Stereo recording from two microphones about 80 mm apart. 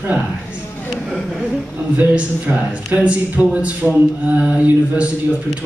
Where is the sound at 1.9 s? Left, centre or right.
Centre.